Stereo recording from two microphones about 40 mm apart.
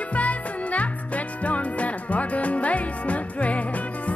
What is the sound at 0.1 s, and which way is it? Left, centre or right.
Music, left.